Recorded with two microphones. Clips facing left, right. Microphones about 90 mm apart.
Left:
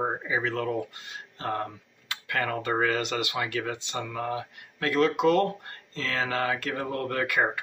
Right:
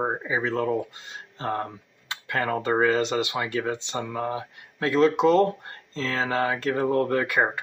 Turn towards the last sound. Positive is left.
turn(degrees=-25)  # may be behind; listen again after turning